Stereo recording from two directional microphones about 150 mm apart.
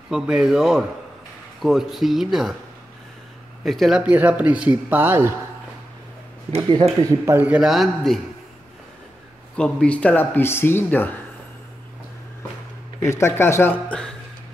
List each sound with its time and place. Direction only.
0.1 s speech: 5° right (ahead or behind)
3.6 s speech: centre (ahead or behind)
6.7 s speech: 30° right (ahead or behind); by 8.2 s centre (ahead or behind)
9.6 s speech: 5° left (ahead or behind)
13.0 s speech: 20° left (ahead or behind)